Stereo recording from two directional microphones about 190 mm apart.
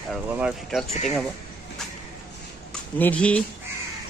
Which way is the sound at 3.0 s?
5° left (ahead or behind).